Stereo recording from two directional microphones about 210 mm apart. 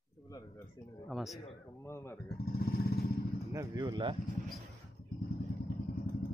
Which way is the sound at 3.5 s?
15° right (ahead or behind).